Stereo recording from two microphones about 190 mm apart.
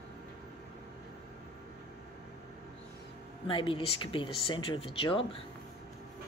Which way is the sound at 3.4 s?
25° left (ahead or behind).